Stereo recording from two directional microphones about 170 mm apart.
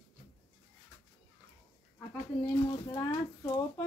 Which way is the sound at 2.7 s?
20° left (ahead or behind).